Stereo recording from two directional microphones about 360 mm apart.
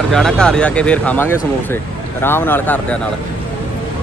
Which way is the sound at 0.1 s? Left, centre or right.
Centre.